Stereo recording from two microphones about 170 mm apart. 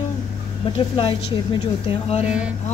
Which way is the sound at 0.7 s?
30° left (ahead or behind).